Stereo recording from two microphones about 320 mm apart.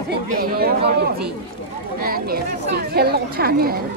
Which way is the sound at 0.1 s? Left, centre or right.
Right.